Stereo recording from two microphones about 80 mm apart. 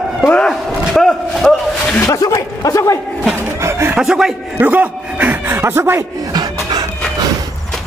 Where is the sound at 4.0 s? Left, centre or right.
Centre.